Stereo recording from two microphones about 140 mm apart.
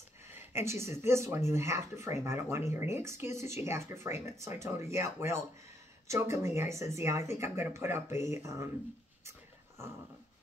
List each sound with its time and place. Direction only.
0.5 s speech: 20° right (ahead or behind)